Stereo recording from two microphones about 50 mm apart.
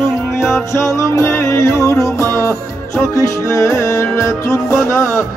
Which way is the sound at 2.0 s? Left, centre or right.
Left.